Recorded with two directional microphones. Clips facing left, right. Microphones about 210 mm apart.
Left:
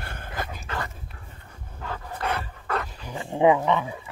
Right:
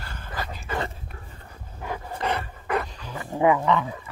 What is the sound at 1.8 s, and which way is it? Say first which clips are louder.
Dog: right 2 dB; 15° right (ahead or behind).